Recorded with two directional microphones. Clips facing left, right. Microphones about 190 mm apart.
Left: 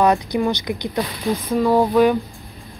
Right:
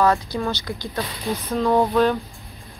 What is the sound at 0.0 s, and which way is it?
Speech, 15° left (ahead or behind).